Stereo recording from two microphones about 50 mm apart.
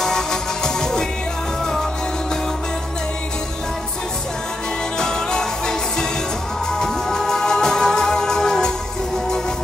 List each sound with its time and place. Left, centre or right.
0.0 s music: centre
4.9 s music: centre